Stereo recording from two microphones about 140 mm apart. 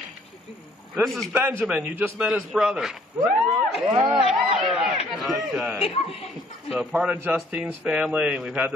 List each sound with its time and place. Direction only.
1.0 s a man's voice: centre (ahead or behind)
1.3 s a man's voice: 15° right (ahead or behind)
4.1 s a sound: 5° right (ahead or behind)
5.1 s a man's voice: centre (ahead or behind)
5.8 s speech: 45° left (ahead or behind)
6.7 s a man's voice: 5° right (ahead or behind)